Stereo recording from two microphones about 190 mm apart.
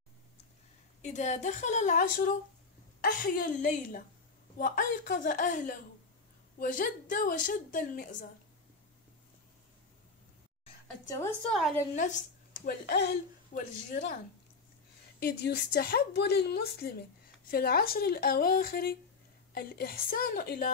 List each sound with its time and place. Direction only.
1.0 s a woman's voice: 40° left (ahead or behind)
11.1 s a woman's voice: 15° left (ahead or behind)
11.9 s a woman's voice: 40° left (ahead or behind)
12.6 s a woman's voice: 60° left (ahead or behind)
15.1 s a woman's voice: 55° left (ahead or behind)